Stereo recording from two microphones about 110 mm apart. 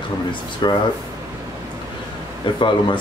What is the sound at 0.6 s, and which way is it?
Speech, 45° left (ahead or behind).